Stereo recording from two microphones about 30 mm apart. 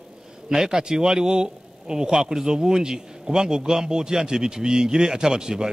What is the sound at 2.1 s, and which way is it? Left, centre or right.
A man's voice, centre.